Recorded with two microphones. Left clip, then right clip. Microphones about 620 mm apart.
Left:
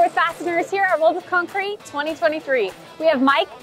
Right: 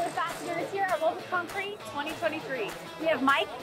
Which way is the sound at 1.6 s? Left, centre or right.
Left.